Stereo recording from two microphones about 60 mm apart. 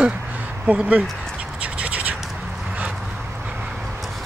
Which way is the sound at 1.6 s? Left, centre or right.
Right.